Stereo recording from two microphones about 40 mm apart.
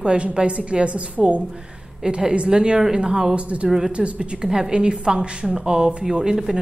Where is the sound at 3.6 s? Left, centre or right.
Centre.